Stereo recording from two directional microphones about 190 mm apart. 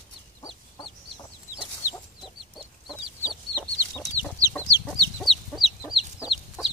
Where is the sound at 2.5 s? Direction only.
Centre (ahead or behind).